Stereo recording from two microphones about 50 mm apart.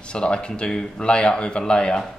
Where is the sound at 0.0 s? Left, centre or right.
Centre.